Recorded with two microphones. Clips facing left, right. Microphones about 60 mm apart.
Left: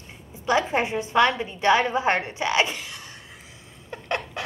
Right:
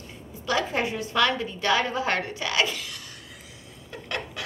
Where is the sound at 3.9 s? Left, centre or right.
Left.